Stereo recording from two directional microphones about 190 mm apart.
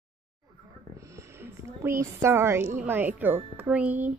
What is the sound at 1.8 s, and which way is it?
Speech, 15° right (ahead or behind).